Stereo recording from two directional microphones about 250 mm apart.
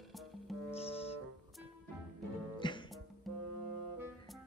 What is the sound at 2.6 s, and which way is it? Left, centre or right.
Music, centre.